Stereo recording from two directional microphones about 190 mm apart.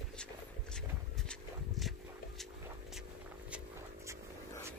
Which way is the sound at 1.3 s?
Centre (ahead or behind).